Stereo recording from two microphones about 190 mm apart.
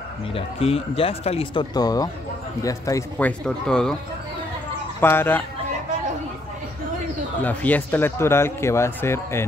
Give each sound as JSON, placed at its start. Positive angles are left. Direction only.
{"t": 0.3, "sound": "speech", "side_deg": 30}
{"t": 5.0, "sound": "speech", "side_deg": 10}
{"t": 7.4, "sound": "speech", "side_deg": 10}